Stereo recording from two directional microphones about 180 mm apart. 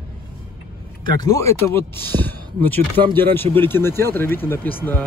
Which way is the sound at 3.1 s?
10° left (ahead or behind).